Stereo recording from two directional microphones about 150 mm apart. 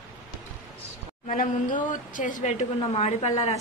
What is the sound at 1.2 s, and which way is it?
Speech, 60° left (ahead or behind).